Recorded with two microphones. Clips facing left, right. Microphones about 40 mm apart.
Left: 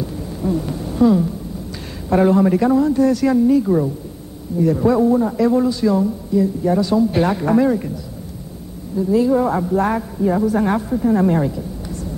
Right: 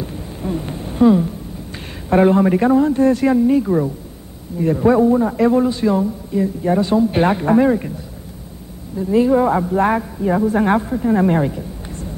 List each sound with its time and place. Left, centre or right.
0.0 s a sound: right
2.0 s a woman's voice: right
3.6 s a man's voice: centre
4.5 s a woman's voice: right
5.0 s a man's voice: centre
5.4 s speech: right
8.9 s speech: right
10.4 s a woman's voice: right